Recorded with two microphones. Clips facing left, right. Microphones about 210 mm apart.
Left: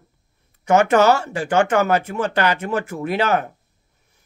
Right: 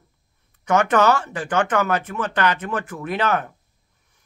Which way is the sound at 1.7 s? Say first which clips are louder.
Left 3 dB; 30° left (ahead or behind).